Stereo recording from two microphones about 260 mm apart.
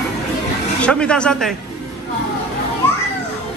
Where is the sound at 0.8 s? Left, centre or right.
Centre.